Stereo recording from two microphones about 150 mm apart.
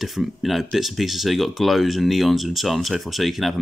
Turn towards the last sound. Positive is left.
turn(degrees=0)  # may be behind; listen again after turning